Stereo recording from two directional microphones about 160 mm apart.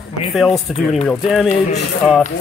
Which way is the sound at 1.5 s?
45° left (ahead or behind).